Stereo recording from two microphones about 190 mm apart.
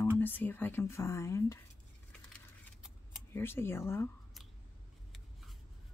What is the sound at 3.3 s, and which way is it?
Speech, 10° left (ahead or behind).